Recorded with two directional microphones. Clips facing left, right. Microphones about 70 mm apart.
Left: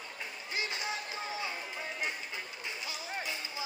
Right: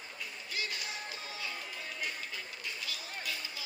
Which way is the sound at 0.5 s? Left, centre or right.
Left.